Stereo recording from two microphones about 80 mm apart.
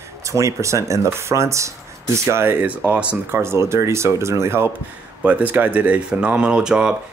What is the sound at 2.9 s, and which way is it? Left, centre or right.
Speech, centre.